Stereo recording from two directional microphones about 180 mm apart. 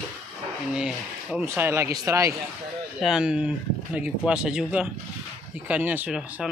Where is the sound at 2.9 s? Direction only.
Centre (ahead or behind).